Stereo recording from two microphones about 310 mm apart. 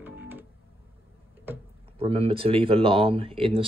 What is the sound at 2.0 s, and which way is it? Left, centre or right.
Speech, centre.